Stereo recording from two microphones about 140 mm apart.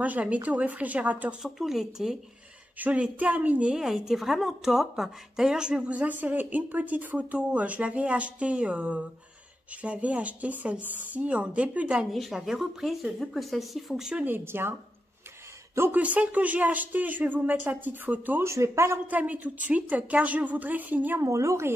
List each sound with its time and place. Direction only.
0.0 s a woman's voice: 10° right (ahead or behind)